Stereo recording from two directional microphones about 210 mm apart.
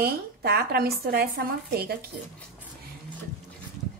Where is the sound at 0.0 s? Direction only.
50° right (ahead or behind).